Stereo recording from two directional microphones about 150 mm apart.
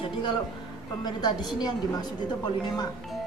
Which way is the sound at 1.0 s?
30° left (ahead or behind).